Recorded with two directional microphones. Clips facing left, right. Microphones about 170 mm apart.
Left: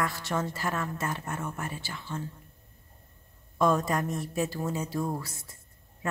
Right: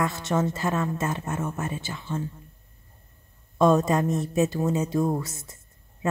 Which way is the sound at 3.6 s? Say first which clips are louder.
Right 6 dB; 25° right (ahead or behind).